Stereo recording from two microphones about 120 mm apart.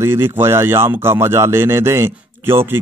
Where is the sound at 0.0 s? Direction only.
20° right (ahead or behind).